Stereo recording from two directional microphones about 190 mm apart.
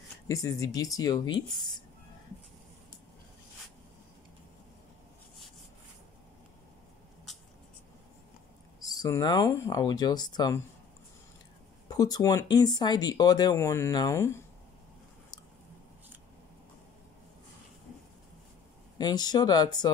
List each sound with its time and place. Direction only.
0.3 s speech: 20° left (ahead or behind)
8.8 s speech: 20° left (ahead or behind)
11.9 s speech: 20° left (ahead or behind)
18.9 s speech: 20° left (ahead or behind)